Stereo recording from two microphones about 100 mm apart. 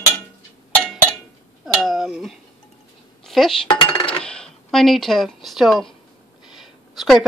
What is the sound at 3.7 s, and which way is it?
Coin, 60° left (ahead or behind).